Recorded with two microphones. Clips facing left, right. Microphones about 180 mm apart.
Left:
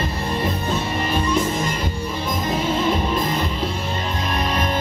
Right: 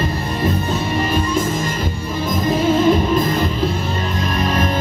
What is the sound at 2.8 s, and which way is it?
Music, 45° right (ahead or behind).